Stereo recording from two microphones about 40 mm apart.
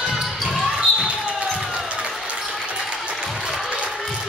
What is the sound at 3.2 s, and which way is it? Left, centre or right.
Applause, centre.